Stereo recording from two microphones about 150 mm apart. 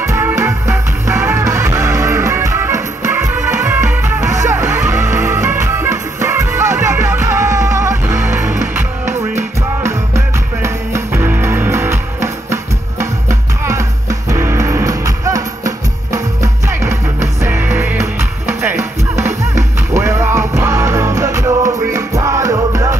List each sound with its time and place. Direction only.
0.0 s music: 15° right (ahead or behind)